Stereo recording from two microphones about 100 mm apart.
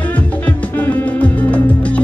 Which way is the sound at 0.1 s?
15° left (ahead or behind).